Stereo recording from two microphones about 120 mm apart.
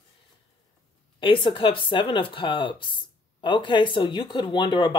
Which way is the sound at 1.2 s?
45° left (ahead or behind).